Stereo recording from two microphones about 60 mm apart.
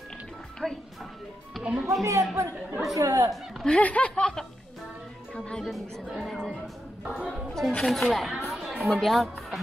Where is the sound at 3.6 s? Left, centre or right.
Left.